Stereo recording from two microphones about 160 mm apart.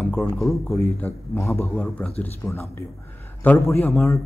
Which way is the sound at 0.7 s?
15° left (ahead or behind).